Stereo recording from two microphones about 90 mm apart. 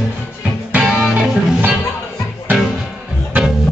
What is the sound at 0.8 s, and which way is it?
Music, 5° right (ahead or behind).